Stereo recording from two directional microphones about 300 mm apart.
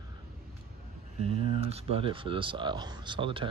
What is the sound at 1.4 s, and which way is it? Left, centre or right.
Speech, centre.